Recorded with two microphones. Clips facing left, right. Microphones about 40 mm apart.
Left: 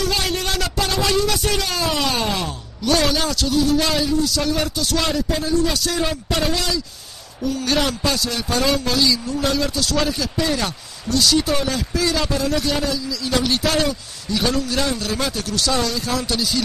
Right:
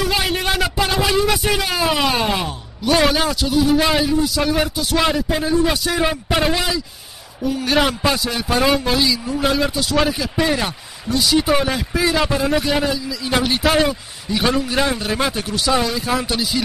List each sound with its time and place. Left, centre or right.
0.0 s a man's voice: centre